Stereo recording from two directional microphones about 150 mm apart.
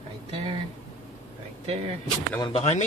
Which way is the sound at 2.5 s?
45° left (ahead or behind).